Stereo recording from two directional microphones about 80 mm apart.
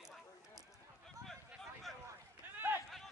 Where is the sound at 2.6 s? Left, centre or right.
Right.